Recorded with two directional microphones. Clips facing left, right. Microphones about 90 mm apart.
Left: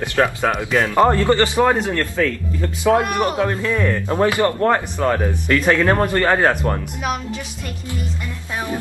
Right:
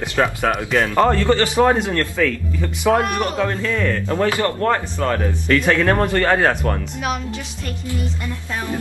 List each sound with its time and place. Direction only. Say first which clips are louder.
0.2 s speech: left 1 dB; centre (ahead or behind)
0.8 s a man's voice: left 2 dB; 15° left (ahead or behind)
1.5 s a man's voice: right 1 dB; 15° right (ahead or behind)
1.9 s a man's voice: even; 15° left (ahead or behind)
2.6 s a man's voice: left 1 dB; 15° right (ahead or behind)
3.0 s a man's voice: left 1 dB; 15° left (ahead or behind)
5.5 s a man's voice: even; 5° left (ahead or behind)